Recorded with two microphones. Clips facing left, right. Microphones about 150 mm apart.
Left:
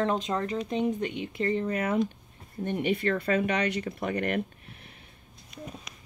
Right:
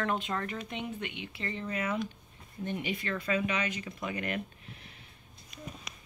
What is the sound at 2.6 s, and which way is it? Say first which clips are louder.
Speech: left 8 dB; 55° left (ahead or behind).